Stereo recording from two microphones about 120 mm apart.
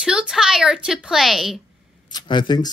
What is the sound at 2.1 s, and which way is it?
Speech, 35° left (ahead or behind).